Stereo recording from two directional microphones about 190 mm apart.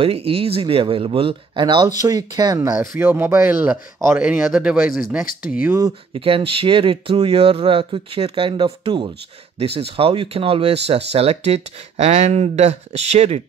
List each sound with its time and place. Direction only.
0.0 s speech: 30° right (ahead or behind); by 5.9 s 15° right (ahead or behind)
6.1 s speech: 30° right (ahead or behind)